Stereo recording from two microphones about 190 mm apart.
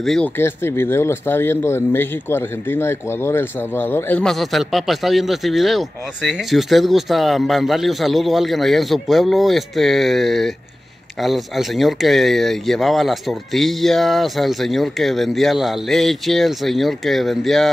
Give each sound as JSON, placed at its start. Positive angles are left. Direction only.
{"t": 0.0, "sound": "speech", "side_deg": 0}